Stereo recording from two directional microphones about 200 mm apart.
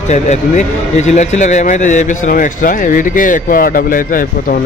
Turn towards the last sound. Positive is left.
turn(degrees=45)  # may be behind; listen again after turning